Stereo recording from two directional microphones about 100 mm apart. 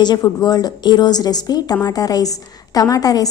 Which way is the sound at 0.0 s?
45° left (ahead or behind).